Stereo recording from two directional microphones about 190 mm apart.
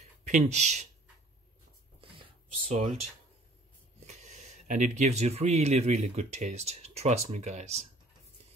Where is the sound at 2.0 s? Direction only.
30° right (ahead or behind).